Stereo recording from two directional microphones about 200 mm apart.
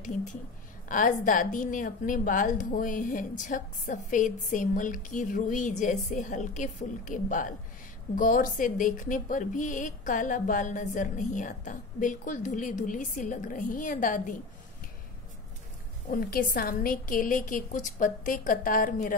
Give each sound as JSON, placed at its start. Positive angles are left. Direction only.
{"t": 0.0, "sound": "a woman's voice", "side_deg": 40}
{"t": 16.1, "sound": "a woman's voice", "side_deg": 45}